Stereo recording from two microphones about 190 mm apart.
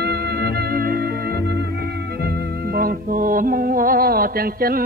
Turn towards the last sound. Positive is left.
turn(degrees=-50)  # may be behind; listen again after turning